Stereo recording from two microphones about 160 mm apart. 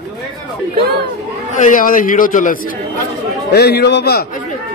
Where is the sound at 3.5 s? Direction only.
90° left.